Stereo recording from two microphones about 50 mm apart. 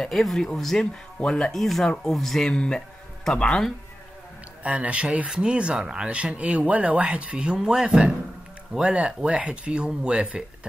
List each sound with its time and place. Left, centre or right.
0.0 s speech: centre
2.5 s a man's voice: centre
4.6 s speech: right
6.1 s speech: right